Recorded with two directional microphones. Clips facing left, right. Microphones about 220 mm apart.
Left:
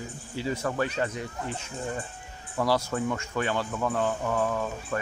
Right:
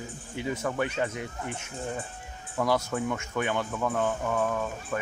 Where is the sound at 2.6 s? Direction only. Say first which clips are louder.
Left 1 dB; 20° right (ahead or behind).